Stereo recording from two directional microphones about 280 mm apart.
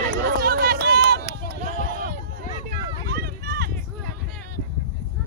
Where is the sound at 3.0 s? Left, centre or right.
Right.